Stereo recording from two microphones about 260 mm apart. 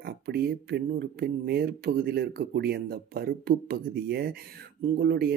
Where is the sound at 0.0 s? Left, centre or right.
Right.